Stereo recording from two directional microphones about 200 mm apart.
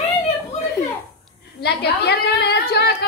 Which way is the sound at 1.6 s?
55° left (ahead or behind).